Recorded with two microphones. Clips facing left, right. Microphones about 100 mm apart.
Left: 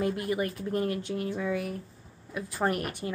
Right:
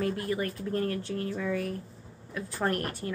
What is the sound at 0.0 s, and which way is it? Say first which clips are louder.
A woman's voice: left 1 dB; 15° left (ahead or behind).